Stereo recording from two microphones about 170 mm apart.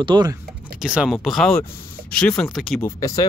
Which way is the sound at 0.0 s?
25° right (ahead or behind).